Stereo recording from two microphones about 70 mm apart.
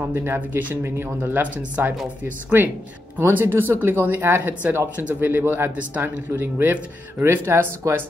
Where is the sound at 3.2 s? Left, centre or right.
Right.